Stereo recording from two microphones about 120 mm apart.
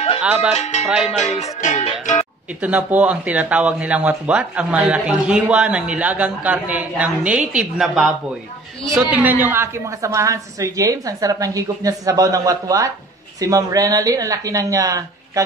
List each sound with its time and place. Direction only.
0.2 s speech: 10° right (ahead or behind)
0.6 s cowbell: 70° left (ahead or behind)
0.8 s speech: 10° right (ahead or behind)
1.1 s music: 65° left (ahead or behind); by 1.9 s 85° left
2.6 s a woman's voice: 10° right (ahead or behind); by 15.4 s 30° right (ahead or behind)